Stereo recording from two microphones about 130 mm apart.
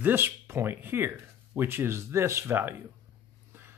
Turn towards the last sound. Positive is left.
turn(degrees=-15)  # may be behind; listen again after turning